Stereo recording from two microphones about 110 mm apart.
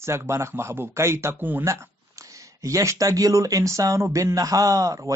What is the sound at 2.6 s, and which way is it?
A man's voice, 30° right (ahead or behind).